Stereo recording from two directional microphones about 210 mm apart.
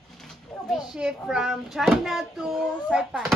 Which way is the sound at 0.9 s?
5° right (ahead or behind).